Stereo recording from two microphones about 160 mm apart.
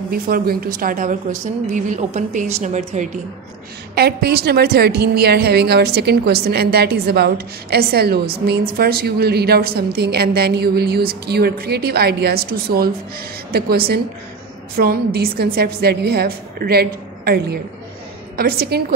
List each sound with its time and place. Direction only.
0.1 s speech: 70° right (ahead or behind)
1.7 s a woman's voice: 50° right (ahead or behind)
3.9 s a woman's voice: 85° right
14.8 s speech: 65° right (ahead or behind)
15.1 s a woman's voice: 75° right (ahead or behind)